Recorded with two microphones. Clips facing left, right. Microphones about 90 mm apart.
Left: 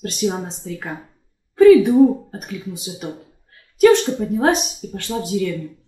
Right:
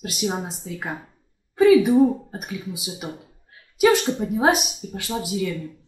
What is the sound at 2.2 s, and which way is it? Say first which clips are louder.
A woman's voice: left 2 dB; 5° right (ahead or behind).